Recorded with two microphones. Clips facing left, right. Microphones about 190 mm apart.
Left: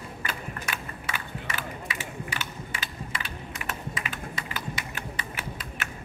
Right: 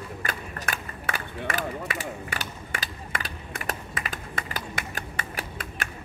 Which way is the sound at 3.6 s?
40° right (ahead or behind).